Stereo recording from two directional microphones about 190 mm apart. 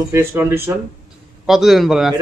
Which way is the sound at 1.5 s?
Centre (ahead or behind).